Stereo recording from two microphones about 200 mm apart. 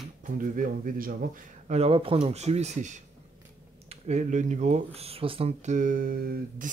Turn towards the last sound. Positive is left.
turn(degrees=-45)  # may be behind; listen again after turning